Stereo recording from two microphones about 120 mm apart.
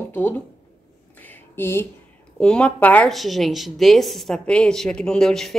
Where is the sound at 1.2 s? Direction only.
15° left (ahead or behind).